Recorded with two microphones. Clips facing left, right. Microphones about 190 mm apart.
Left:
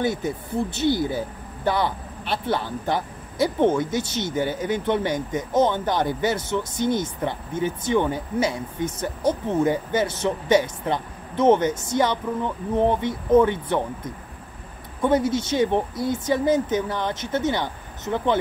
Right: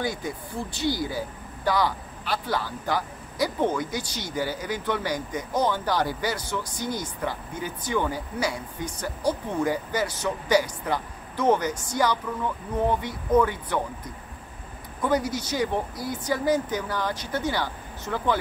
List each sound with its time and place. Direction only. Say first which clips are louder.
0.0 s speech: left 5 dB; 25° left (ahead or behind)
15.0 s speech: left 5 dB; 25° left (ahead or behind)